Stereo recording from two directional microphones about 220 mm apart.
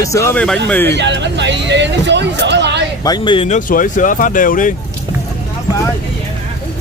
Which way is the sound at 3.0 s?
20° left (ahead or behind).